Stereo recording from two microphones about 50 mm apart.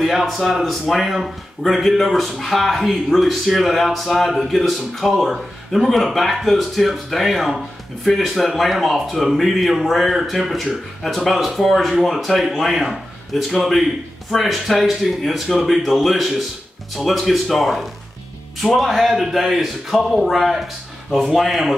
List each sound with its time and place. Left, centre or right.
0.0 s speech: centre